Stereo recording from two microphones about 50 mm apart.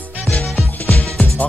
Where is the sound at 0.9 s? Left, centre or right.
Left.